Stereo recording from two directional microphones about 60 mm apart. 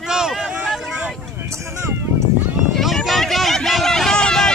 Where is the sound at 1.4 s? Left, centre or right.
Right.